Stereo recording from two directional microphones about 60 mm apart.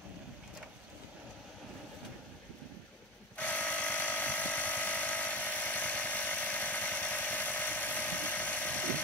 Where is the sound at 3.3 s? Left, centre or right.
Left.